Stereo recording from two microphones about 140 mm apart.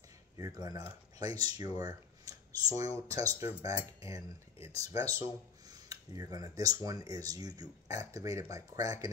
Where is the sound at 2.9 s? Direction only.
25° right (ahead or behind).